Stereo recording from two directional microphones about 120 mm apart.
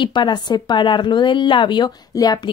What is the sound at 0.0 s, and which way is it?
Speech, 40° left (ahead or behind).